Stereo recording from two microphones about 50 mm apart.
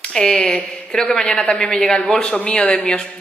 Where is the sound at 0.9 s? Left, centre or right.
Centre.